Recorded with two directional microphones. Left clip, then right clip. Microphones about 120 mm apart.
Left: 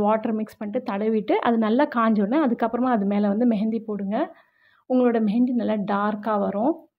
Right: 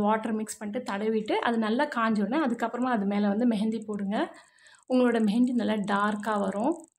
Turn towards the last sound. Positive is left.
turn(degrees=25)  # may be behind; listen again after turning